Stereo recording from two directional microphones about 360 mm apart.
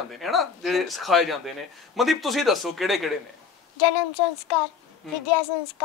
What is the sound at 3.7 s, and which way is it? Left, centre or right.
A woman's voice, left.